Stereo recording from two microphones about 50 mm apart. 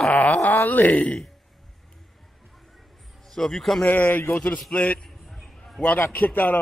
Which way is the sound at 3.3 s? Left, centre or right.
Centre.